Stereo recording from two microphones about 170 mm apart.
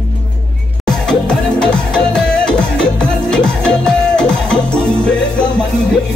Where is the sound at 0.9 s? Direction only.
5° left (ahead or behind).